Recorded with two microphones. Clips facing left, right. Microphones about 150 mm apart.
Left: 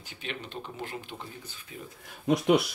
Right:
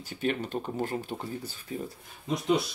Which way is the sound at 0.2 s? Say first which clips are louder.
Right 9 dB; 45° right (ahead or behind).